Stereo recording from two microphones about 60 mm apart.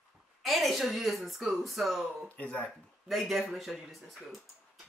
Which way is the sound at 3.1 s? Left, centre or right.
Centre.